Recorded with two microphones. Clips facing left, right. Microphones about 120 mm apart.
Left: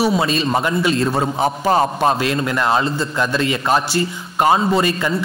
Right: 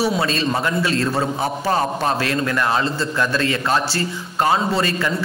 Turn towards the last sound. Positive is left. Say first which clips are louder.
# left 3 dB
turn(degrees=15)  # may be behind; listen again after turning